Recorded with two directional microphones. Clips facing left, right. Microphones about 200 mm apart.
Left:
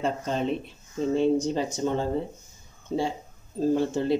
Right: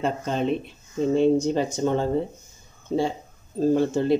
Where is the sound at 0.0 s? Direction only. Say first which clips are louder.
Right 2 dB; 60° right (ahead or behind).